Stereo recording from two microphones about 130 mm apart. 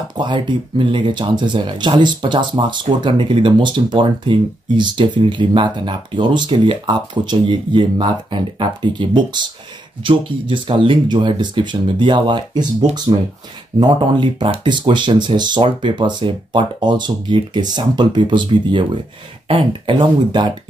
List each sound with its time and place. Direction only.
0.1 s speech: 35° right (ahead or behind)